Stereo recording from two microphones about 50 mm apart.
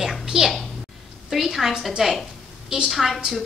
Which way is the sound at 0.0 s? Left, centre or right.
Centre.